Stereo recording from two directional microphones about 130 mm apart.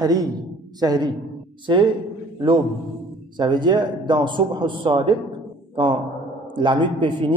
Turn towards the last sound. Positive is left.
turn(degrees=-40)  # may be behind; listen again after turning